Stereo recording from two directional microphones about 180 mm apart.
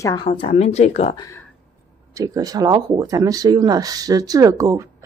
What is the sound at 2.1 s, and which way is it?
Speech, 20° right (ahead or behind).